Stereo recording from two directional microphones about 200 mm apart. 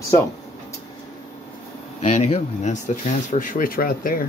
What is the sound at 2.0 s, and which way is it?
Speech, 35° left (ahead or behind).